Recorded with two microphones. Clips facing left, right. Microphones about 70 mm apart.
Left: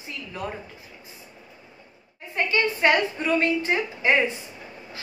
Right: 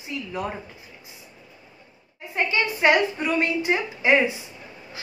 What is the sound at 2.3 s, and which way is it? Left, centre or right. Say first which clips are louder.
A woman's voice: even; centre.